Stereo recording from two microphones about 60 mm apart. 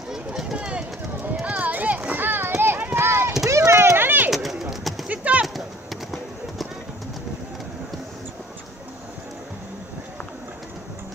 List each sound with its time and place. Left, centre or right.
0.1 s run: centre
1.4 s clip-clop: right
2.5 s run: right
3.4 s a sound: right
4.3 s bird: centre
5.1 s clip-clop: right